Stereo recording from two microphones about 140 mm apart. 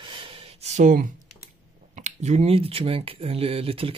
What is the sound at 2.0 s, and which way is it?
Speech, 55° right (ahead or behind).